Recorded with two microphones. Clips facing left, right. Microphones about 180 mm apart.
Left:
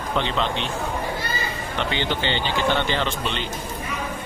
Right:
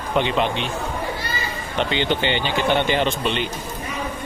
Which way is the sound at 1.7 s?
15° right (ahead or behind).